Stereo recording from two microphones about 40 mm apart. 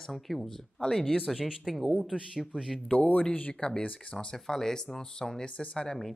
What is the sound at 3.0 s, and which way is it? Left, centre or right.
Speech, left.